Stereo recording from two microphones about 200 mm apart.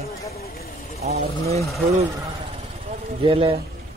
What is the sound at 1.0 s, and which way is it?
Speech, 30° right (ahead or behind).